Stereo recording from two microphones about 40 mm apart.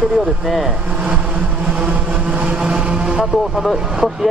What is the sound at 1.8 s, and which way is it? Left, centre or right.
Music, right.